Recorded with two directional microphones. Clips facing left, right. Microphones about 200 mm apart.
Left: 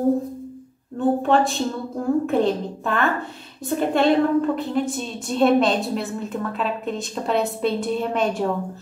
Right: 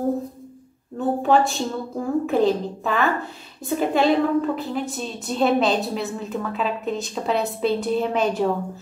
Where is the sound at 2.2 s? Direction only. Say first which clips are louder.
Right 1 dB; centre (ahead or behind).